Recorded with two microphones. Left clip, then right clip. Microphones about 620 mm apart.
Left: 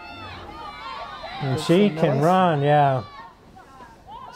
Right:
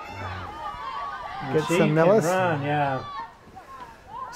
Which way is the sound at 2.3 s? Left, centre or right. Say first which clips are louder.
Left 6 dB; left.